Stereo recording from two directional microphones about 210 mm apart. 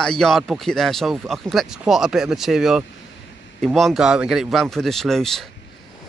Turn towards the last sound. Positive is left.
turn(degrees=0)  # may be behind; listen again after turning